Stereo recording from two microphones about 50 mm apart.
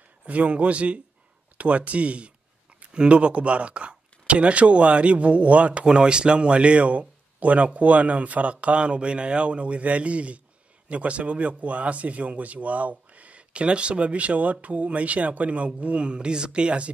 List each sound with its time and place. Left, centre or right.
0.3 s speech: right